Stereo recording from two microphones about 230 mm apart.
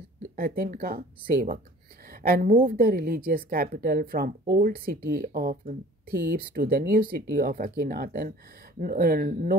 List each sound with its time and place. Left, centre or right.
0.4 s speech: right